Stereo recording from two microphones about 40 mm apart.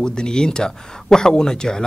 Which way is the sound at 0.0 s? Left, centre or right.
Centre.